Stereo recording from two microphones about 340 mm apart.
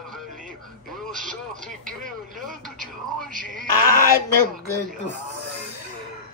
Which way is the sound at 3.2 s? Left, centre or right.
Right.